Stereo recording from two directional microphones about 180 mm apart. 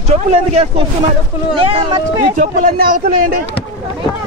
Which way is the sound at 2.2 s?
45° right (ahead or behind).